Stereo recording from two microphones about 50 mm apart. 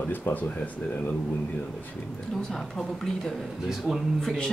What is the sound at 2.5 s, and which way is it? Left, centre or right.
Speech, centre.